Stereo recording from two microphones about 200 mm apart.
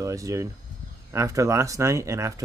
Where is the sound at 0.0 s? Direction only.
15° right (ahead or behind).